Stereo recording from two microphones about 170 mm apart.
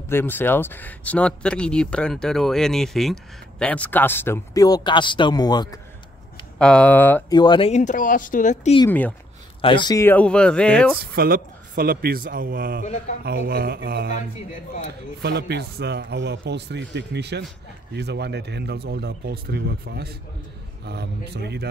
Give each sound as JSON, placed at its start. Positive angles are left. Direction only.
{"t": 0.1, "sound": "speech", "side_deg": 10}
{"t": 6.6, "sound": "speech", "side_deg": 5}
{"t": 7.2, "sound": "speech", "side_deg": 25}
{"t": 7.7, "sound": "speech", "side_deg": 50}
{"t": 8.8, "sound": "speech", "side_deg": 10}
{"t": 9.6, "sound": "speech", "side_deg": 30}
{"t": 10.0, "sound": "speech", "side_deg": 10}
{"t": 11.0, "sound": "a man's voice", "side_deg": -60}
{"t": 13.2, "sound": "speech", "side_deg": -70}
{"t": 15.2, "sound": "a man's voice", "side_deg": -70}